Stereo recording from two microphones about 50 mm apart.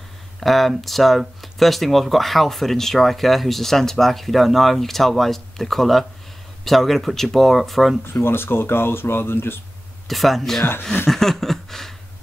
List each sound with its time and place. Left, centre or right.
0.4 s speech: centre
8.1 s speech: left
10.0 s speech: centre
11.1 s a sound: centre